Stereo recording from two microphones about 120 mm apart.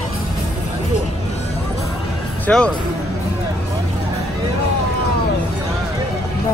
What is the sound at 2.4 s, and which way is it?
Speech, 10° left (ahead or behind).